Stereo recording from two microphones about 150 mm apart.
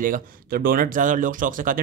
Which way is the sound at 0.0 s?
70° right (ahead or behind).